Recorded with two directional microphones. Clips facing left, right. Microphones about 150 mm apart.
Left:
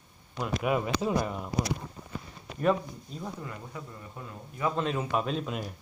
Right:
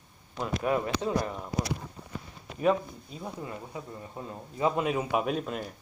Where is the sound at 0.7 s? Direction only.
10° left (ahead or behind).